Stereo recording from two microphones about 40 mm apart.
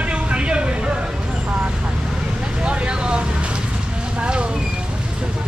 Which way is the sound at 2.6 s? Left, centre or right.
Right.